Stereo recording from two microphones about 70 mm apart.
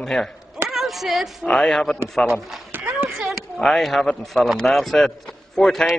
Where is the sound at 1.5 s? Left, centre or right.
Centre.